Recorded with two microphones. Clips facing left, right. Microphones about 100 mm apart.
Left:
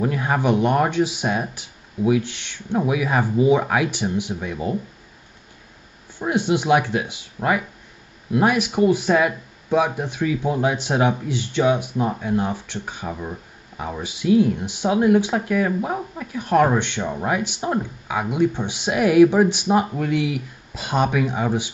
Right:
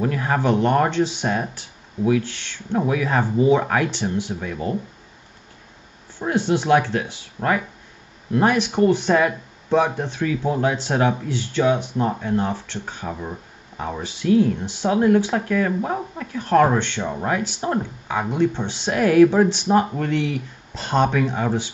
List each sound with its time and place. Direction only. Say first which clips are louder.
0.0 s speech: even; 15° left (ahead or behind)
6.2 s speech: even; 15° left (ahead or behind)
8.3 s speech: even; 10° left (ahead or behind)
13.1 s speech: even; centre (ahead or behind)